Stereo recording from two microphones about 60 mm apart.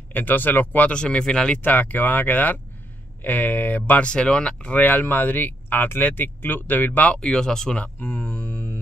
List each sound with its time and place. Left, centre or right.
0.1 s speech: left
0.9 s speech: centre
1.6 s speech: left
4.0 s speech: centre
4.7 s speech: left
7.1 s speech: centre
8.5 s music: left